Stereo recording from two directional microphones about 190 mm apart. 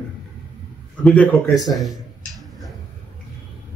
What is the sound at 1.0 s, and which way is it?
Speech, 5° left (ahead or behind).